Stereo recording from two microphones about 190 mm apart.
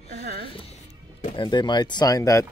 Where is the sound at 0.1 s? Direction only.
60° right (ahead or behind).